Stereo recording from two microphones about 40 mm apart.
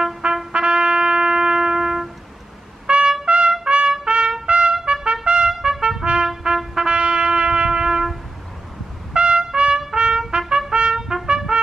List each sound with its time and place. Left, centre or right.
0.5 s brass instrument: right
2.9 s trumpet: right
9.1 s trumpet: right
11.0 s trumpet: centre